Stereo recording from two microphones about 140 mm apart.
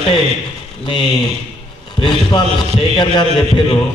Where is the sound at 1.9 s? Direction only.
35° left (ahead or behind).